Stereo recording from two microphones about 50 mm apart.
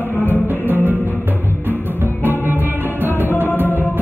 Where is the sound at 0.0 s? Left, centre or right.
Left.